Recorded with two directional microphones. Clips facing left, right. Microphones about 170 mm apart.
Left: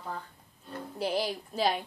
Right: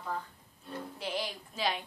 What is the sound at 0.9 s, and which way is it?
Speech, 35° left (ahead or behind).